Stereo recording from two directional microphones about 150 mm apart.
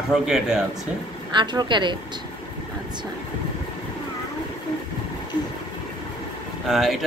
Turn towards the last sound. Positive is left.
turn(degrees=0)  # may be behind; listen again after turning